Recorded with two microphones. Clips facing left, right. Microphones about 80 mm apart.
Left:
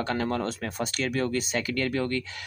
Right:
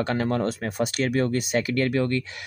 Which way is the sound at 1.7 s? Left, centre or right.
Right.